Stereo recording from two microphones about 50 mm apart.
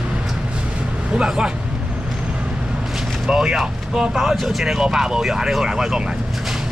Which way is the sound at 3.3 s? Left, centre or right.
Centre.